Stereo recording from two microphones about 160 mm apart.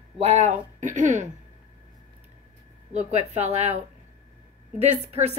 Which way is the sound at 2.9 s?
40° right (ahead or behind).